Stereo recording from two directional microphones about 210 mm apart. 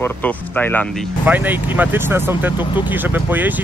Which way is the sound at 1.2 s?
10° right (ahead or behind).